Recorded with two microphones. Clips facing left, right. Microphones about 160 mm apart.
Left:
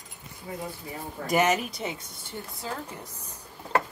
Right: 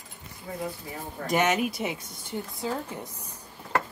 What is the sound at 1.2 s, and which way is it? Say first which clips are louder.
Speech: even; centre (ahead or behind).